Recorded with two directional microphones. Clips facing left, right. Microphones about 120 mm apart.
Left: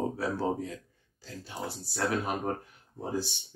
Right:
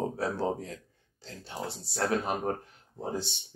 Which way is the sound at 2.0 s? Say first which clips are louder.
Right 1 dB; 30° right (ahead or behind).